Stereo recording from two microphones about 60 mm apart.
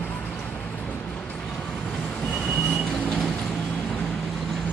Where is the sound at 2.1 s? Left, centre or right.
Centre.